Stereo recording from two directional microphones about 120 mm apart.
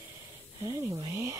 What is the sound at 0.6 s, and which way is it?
Speech, 30° right (ahead or behind).